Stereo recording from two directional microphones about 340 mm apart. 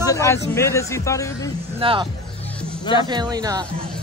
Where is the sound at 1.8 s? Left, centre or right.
Centre.